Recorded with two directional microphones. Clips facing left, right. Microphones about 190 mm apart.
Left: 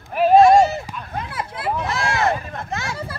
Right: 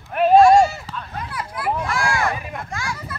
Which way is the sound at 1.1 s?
25° left (ahead or behind).